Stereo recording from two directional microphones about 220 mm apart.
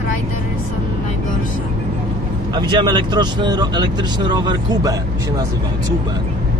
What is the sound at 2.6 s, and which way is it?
Speech, 20° right (ahead or behind).